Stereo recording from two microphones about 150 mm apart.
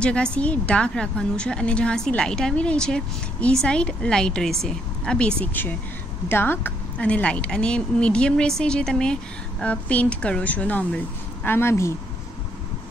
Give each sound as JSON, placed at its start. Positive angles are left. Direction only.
{"t": 0.0, "sound": "a woman's voice", "side_deg": 5}